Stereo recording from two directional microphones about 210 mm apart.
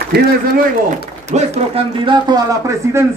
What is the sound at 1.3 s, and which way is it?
Speech, 30° right (ahead or behind).